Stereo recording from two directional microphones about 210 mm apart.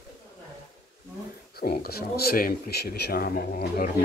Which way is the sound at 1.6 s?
45° left (ahead or behind).